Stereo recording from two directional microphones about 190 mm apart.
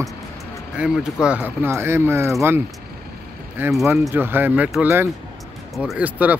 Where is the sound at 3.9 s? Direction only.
10° right (ahead or behind).